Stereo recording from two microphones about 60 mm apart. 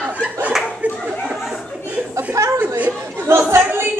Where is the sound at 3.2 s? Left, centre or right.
Right.